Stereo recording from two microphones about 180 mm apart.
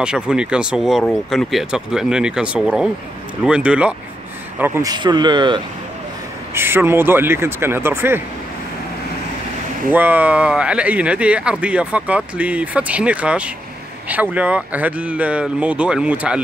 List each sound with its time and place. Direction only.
0.0 s speech: 5° right (ahead or behind)
4.9 s speech: 25° right (ahead or behind)
6.5 s speech: 15° right (ahead or behind)
9.8 s speech: 10° right (ahead or behind)